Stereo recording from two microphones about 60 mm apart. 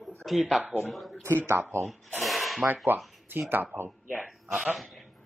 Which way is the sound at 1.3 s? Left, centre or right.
Right.